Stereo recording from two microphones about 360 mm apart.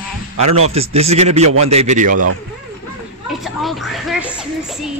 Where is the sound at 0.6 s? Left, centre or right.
Centre.